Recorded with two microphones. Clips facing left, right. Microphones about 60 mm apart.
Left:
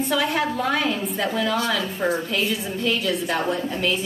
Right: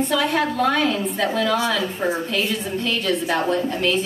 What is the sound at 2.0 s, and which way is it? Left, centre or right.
Speech, centre.